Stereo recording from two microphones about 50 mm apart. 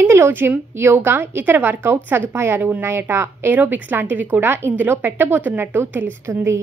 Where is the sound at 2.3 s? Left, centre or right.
Right.